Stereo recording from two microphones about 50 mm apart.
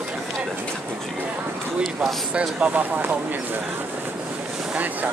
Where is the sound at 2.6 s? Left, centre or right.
Right.